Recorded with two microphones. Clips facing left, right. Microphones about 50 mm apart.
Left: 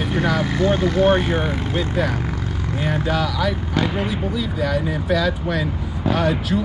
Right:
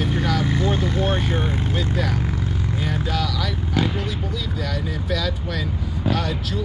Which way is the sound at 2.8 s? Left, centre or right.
Centre.